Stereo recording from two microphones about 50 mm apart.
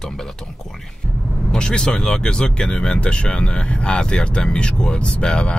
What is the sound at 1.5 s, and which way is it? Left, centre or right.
Speech, centre.